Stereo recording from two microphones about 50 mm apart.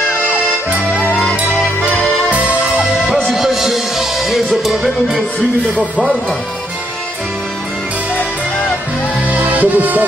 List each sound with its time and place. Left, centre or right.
1.0 s music: left
2.3 s music: right
3.1 s music: centre
5.8 s speech: right
8.2 s music: left
9.2 s music: right